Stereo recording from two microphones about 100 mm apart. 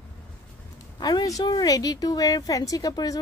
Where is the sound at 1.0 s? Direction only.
40° left (ahead or behind).